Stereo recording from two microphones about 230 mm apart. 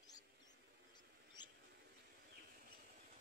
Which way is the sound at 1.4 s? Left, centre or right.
Centre.